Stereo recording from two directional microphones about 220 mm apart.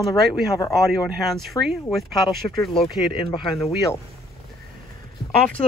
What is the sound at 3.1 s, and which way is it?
Speech, 25° left (ahead or behind).